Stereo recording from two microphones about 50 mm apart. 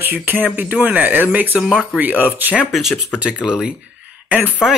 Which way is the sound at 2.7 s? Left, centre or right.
Centre.